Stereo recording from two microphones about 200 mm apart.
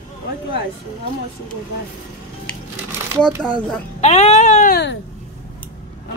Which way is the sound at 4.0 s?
35° left (ahead or behind).